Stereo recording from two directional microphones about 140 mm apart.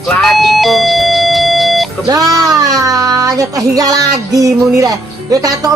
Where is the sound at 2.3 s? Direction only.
25° right (ahead or behind).